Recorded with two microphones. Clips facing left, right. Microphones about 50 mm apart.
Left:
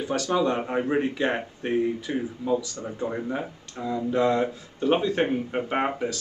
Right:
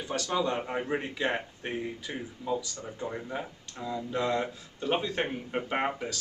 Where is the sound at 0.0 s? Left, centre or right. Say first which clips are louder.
Left 6 dB; centre.